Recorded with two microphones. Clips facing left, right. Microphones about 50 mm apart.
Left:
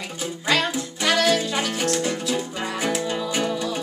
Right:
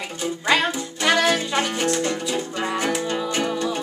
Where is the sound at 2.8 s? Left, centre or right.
Centre.